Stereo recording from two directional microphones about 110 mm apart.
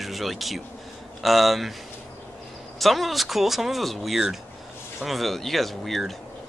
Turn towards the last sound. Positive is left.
turn(degrees=0)  # may be behind; listen again after turning